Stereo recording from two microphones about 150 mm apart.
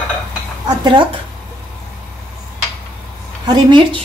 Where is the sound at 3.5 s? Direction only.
30° right (ahead or behind).